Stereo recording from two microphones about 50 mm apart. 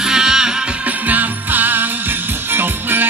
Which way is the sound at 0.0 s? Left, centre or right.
Centre.